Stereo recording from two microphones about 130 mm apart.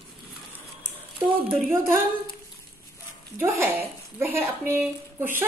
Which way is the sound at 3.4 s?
15° right (ahead or behind).